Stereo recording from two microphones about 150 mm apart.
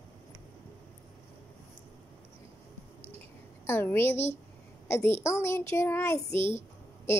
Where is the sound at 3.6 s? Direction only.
15° left (ahead or behind).